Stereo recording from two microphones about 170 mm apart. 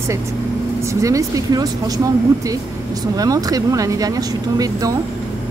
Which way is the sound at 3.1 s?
20° right (ahead or behind).